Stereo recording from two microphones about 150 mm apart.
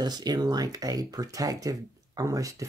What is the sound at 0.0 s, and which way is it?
Speech, 25° right (ahead or behind).